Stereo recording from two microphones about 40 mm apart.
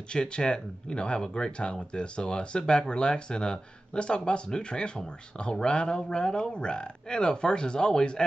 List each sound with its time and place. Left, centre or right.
0.1 s speech: left